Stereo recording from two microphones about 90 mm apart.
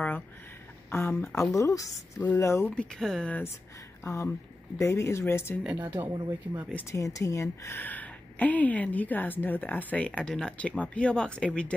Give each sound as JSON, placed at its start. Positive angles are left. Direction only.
{"t": 0.8, "sound": "speech", "side_deg": 25}
{"t": 2.7, "sound": "a woman's voice", "side_deg": 10}
{"t": 3.3, "sound": "speech", "side_deg": 20}
{"t": 4.0, "sound": "speech", "side_deg": 35}
{"t": 5.7, "sound": "speech", "side_deg": -20}
{"t": 6.9, "sound": "speech", "side_deg": 35}
{"t": 7.7, "sound": "a woman's voice", "side_deg": 20}